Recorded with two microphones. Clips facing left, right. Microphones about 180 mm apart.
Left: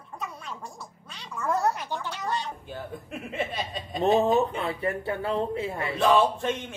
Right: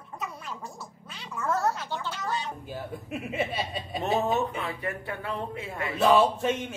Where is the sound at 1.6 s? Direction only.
15° left (ahead or behind).